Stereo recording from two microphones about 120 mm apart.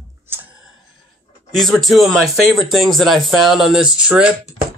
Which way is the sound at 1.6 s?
Centre (ahead or behind).